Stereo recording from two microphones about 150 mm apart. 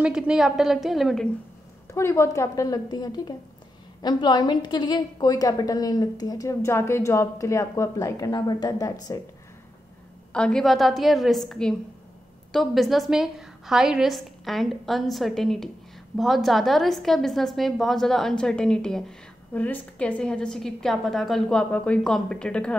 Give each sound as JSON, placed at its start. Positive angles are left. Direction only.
{"t": 0.0, "sound": "a woman's voice", "side_deg": -5}
{"t": 2.0, "sound": "a woman's voice", "side_deg": 20}
{"t": 10.3, "sound": "a woman's voice", "side_deg": 5}